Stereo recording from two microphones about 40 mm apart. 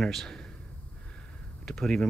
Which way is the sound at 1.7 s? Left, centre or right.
Centre.